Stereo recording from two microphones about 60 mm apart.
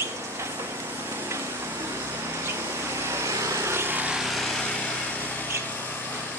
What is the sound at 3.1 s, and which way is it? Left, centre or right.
Vehicle, right.